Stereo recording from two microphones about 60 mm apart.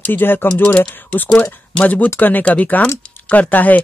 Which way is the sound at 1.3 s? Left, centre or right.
Centre.